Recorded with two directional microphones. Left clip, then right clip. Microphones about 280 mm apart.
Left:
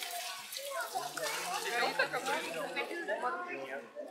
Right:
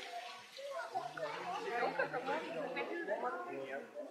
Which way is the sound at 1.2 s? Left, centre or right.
Centre.